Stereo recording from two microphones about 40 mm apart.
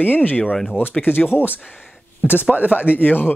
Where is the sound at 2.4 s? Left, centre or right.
Right.